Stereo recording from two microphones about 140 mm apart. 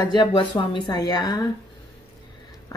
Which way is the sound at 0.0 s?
30° left (ahead or behind).